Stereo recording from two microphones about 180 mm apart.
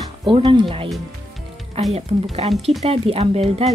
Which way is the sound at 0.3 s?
30° right (ahead or behind).